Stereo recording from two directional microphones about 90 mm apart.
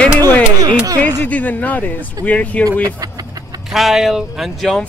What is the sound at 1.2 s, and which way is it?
Speech, 20° left (ahead or behind).